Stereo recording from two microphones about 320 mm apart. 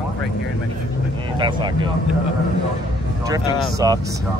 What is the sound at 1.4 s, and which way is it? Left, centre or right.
Speech, centre.